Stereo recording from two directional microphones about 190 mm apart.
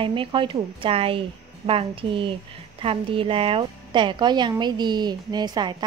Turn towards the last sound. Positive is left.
turn(degrees=-20)  # may be behind; listen again after turning